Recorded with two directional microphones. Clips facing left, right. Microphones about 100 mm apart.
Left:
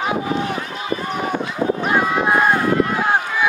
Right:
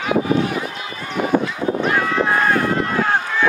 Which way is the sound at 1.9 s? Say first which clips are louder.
Left 3 dB; 20° left (ahead or behind).